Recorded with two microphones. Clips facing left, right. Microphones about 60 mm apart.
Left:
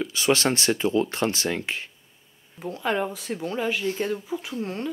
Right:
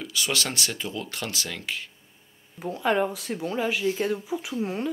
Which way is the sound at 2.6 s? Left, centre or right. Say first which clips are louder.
Right 2 dB; centre.